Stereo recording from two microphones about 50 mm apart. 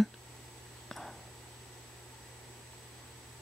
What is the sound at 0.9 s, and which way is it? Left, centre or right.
Whispering, centre.